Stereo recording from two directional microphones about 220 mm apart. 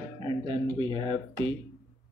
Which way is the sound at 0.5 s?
25° right (ahead or behind).